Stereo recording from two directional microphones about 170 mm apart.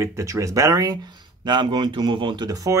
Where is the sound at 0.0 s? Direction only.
15° right (ahead or behind).